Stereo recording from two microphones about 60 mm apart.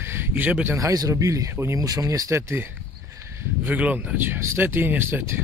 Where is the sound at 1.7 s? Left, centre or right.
Right.